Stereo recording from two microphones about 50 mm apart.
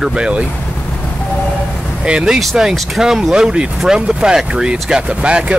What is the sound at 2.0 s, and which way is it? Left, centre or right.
Speech, centre.